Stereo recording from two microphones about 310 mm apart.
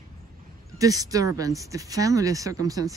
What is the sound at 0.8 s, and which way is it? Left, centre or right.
Speech, centre.